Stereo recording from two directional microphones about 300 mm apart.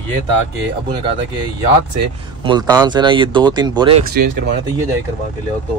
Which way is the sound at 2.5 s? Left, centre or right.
Centre.